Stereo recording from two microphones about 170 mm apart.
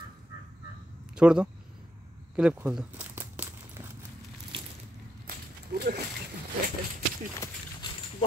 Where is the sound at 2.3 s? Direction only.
5° right (ahead or behind).